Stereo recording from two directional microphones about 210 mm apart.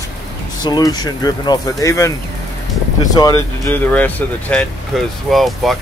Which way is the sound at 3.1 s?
15° left (ahead or behind).